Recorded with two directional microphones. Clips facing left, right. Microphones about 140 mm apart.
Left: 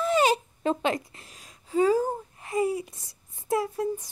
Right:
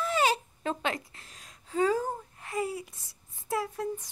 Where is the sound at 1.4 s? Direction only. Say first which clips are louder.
Left 4 dB; 5° left (ahead or behind).